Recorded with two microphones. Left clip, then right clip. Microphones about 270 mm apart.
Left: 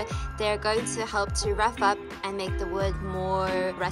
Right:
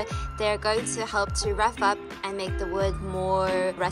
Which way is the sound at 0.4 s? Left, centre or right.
Centre.